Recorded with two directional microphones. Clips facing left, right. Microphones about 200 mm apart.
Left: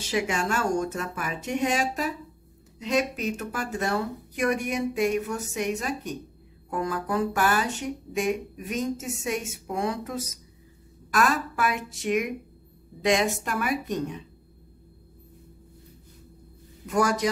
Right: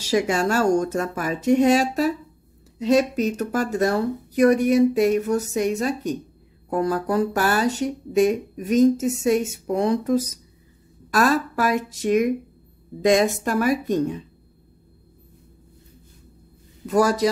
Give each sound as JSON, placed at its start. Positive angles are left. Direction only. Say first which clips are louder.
{"t": 0.1, "sound": "speech", "louder": "right 6 dB", "side_deg": -40}
{"t": 16.8, "sound": "speech", "louder": "right 5 dB", "side_deg": -35}